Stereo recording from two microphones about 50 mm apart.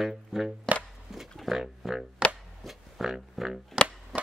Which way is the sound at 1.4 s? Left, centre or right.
Centre.